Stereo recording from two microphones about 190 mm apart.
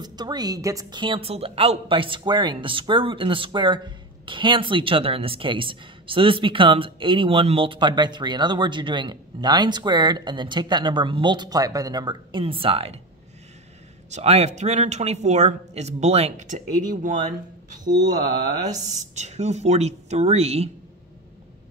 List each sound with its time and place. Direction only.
0.0 s speech: 20° right (ahead or behind)
14.1 s speech: 35° right (ahead or behind)
18.9 s speech: 35° right (ahead or behind)